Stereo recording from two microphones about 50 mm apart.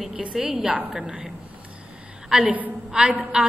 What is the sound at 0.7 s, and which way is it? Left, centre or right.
A woman's voice, right.